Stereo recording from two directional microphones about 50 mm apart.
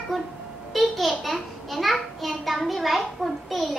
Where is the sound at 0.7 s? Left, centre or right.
Centre.